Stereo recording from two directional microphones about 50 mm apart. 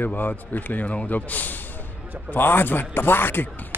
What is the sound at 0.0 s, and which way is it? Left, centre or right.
A man's voice, left.